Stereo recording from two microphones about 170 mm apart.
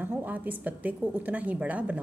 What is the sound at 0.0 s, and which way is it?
A woman's voice, 10° right (ahead or behind).